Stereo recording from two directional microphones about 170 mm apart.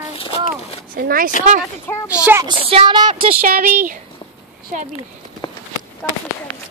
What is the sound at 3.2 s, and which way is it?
Speech, 55° right (ahead or behind).